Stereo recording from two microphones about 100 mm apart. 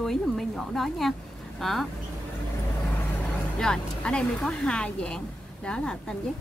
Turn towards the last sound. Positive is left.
turn(degrees=10)  # may be behind; listen again after turning